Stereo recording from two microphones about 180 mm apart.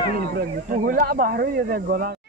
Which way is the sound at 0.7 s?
50° right (ahead or behind).